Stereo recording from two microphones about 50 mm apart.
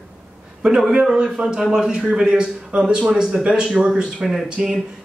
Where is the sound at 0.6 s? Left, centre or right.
Centre.